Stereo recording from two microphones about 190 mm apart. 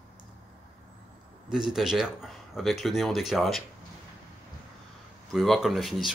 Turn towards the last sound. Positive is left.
turn(degrees=0)  # may be behind; listen again after turning